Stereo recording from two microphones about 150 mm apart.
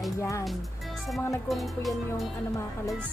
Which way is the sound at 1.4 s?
Centre (ahead or behind).